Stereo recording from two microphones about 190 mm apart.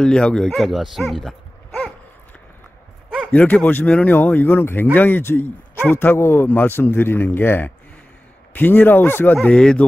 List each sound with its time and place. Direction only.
0.0 s speech: 5° left (ahead or behind)
3.3 s speech: 5° left (ahead or behind)